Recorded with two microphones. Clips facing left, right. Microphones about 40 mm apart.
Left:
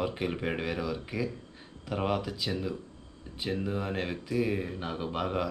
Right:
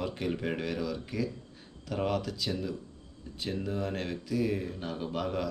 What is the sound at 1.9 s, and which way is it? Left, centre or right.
Speech, centre.